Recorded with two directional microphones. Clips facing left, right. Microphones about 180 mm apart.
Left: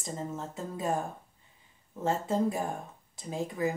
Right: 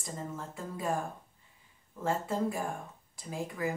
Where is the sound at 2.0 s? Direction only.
20° left (ahead or behind).